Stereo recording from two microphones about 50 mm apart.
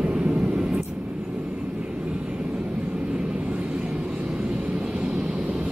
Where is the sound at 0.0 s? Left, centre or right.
Right.